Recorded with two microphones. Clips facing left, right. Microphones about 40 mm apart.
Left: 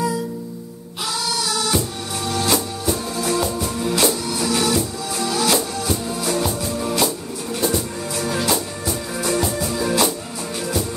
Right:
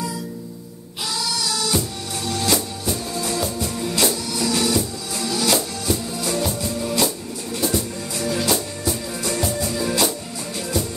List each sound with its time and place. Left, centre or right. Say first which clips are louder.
1.7 s music: left 2 dB; centre
5.2 s music: left 2 dB; centre
5.9 s music: left 1 dB; centre